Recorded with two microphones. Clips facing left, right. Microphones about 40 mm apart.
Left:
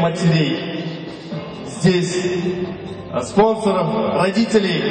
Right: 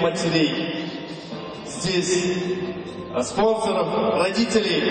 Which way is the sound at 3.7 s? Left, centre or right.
Left.